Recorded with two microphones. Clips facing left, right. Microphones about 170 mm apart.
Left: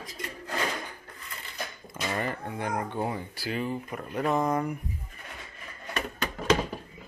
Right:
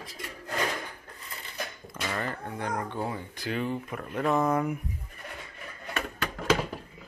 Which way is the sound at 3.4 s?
5° left (ahead or behind).